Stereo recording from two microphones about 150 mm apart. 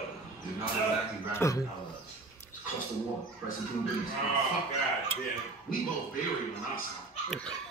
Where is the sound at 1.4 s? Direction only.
15° left (ahead or behind).